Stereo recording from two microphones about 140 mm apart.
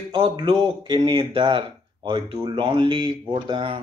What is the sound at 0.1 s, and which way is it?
Speech, 35° right (ahead or behind).